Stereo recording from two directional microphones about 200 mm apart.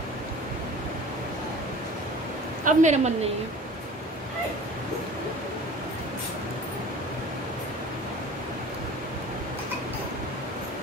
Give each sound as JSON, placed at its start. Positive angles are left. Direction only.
{"t": 2.6, "sound": "a woman's voice", "side_deg": -35}